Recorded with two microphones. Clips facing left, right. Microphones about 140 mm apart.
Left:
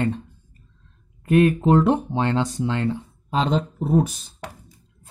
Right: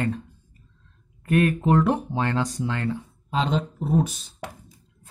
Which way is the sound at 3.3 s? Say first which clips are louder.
Left 3 dB; 40° left (ahead or behind).